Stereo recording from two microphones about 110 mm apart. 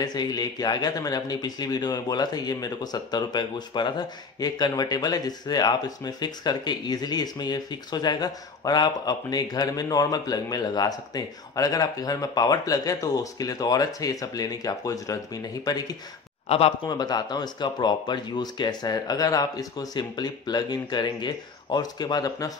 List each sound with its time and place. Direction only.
0.0 s speech: 40° left (ahead or behind)
16.4 s speech: 65° left (ahead or behind)
16.8 s speech: 40° left (ahead or behind)